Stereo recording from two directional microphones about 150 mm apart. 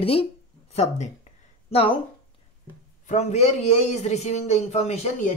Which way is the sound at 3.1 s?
50° left (ahead or behind).